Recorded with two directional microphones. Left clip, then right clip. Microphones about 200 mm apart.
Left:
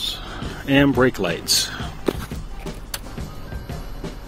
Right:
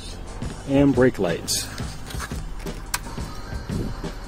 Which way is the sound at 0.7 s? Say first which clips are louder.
Left 1 dB; centre (ahead or behind).